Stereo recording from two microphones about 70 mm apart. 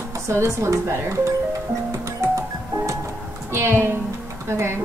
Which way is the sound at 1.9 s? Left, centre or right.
Right.